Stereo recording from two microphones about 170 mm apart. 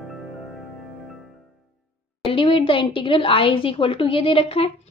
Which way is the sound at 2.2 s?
30° left (ahead or behind).